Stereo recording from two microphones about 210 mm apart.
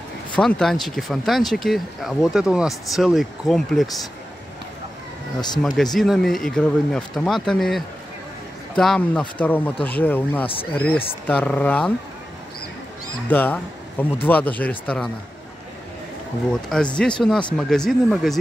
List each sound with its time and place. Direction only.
0.4 s speech: 5° left (ahead or behind)
5.9 s speech: centre (ahead or behind)
10.4 s speech: 25° left (ahead or behind)
10.7 s speech: 5° left (ahead or behind)
13.3 s speech: 10° left (ahead or behind)
16.7 s speech: 5° left (ahead or behind)